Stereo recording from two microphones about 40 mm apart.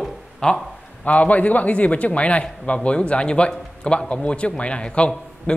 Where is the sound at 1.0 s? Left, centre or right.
Left.